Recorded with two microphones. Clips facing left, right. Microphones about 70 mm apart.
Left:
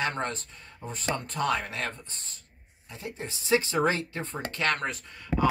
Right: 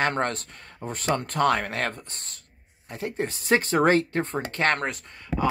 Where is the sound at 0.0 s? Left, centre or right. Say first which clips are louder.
Right 5 dB; right.